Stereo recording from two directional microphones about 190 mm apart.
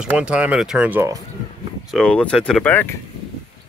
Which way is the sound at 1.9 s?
5° left (ahead or behind).